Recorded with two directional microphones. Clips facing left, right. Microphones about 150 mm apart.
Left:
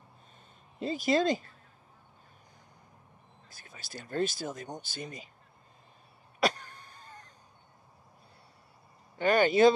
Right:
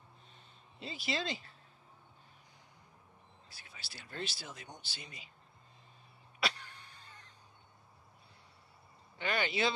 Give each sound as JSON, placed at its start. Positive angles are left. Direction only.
{"t": 0.7, "sound": "speech", "side_deg": 45}
{"t": 3.4, "sound": "speech", "side_deg": 45}
{"t": 6.4, "sound": "a sound", "side_deg": 45}
{"t": 9.2, "sound": "speech", "side_deg": 45}